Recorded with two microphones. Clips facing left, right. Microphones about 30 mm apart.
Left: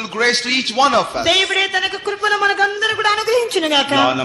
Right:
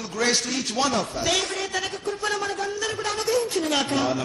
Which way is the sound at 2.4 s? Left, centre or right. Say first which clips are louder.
Left 13 dB; left.